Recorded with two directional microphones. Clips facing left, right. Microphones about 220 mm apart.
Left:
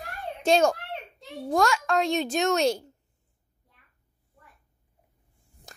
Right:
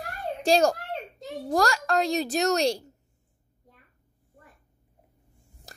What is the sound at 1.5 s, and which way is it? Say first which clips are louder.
Speech: even; centre (ahead or behind).